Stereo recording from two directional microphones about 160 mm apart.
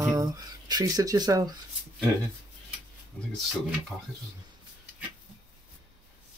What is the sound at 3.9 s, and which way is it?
Speech, 5° left (ahead or behind).